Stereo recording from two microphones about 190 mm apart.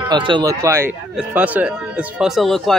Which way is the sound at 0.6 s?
15° right (ahead or behind).